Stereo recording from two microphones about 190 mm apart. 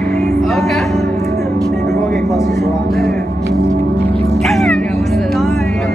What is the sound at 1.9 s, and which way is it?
Vehicle, centre (ahead or behind).